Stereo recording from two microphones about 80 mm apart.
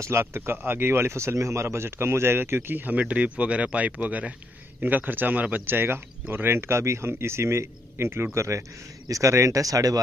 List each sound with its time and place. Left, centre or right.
0.0 s speech: right